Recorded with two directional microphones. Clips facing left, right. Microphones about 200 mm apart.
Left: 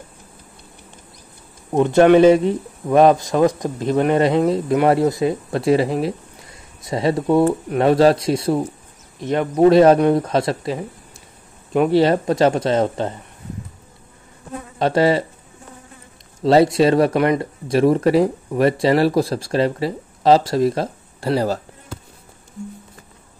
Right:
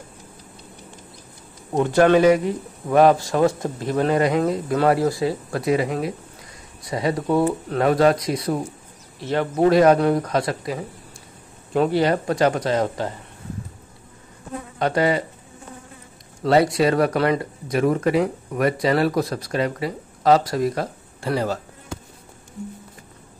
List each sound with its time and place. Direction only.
1.7 s speech: 20° left (ahead or behind)
11.9 s speech: 25° left (ahead or behind)
14.8 s speech: 25° left (ahead or behind)
16.3 s speech: 25° left (ahead or behind)
17.6 s speech: 30° left (ahead or behind)